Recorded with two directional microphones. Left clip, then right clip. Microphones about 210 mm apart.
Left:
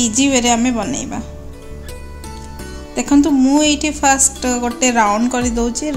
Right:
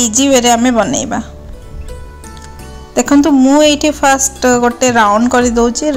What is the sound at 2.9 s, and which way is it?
A woman's voice, 20° right (ahead or behind).